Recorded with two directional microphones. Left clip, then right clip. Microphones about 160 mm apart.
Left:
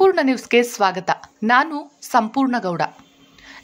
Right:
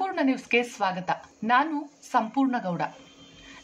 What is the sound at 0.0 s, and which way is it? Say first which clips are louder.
A woman's voice: left 11 dB; 50° left (ahead or behind).